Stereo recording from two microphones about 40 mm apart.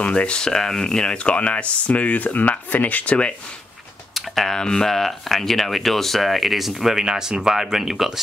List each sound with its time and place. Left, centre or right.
0.0 s speech: left
4.1 s computer keyboard: centre
4.6 s speech: centre